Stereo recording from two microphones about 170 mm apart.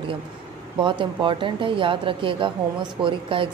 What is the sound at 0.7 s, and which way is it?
Speech, 30° right (ahead or behind).